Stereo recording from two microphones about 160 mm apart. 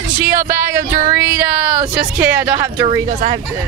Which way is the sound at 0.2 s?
55° right (ahead or behind).